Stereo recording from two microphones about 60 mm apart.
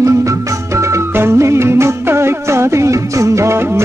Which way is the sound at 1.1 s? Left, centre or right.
Right.